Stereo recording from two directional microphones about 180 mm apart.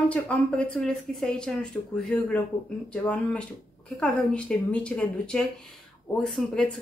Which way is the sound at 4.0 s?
5° left (ahead or behind).